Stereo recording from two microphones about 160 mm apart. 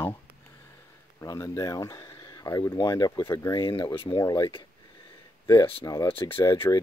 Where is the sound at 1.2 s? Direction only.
20° left (ahead or behind).